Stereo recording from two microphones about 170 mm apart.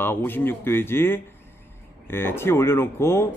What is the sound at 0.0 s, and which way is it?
Speech, 15° left (ahead or behind).